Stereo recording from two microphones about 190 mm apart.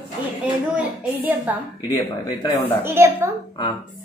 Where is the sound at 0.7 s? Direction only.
10° right (ahead or behind).